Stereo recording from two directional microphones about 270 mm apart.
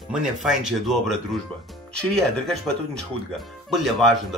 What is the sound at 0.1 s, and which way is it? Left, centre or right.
Speech, centre.